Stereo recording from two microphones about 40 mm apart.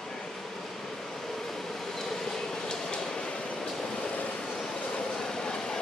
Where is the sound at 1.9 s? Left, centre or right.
Centre.